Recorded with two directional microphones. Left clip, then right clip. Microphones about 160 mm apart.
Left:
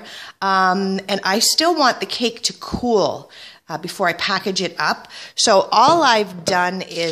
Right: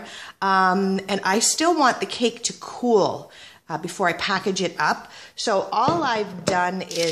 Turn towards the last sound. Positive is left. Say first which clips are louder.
# left 3 dB
turn(degrees=25)  # may be behind; listen again after turning